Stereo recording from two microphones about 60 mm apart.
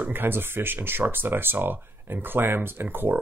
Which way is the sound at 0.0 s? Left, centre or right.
Right.